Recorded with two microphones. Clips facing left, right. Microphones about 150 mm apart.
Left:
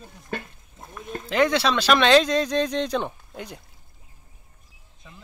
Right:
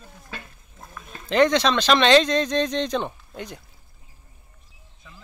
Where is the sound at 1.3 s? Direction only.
5° left (ahead or behind).